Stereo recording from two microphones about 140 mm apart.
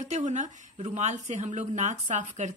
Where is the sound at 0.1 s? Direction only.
60° right (ahead or behind).